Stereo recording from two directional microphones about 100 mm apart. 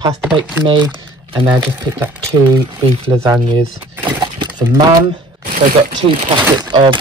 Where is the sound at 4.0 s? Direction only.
50° right (ahead or behind).